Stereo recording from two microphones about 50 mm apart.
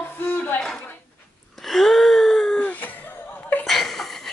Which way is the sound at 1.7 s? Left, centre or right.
Centre.